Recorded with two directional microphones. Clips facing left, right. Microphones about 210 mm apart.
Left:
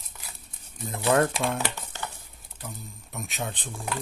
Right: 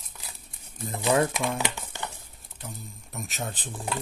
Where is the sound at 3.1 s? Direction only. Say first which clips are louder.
Left 1 dB; centre (ahead or behind).